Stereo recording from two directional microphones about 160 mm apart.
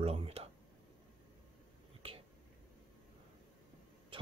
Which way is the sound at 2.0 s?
35° right (ahead or behind).